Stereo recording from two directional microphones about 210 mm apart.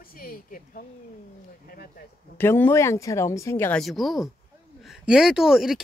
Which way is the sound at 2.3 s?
10° left (ahead or behind).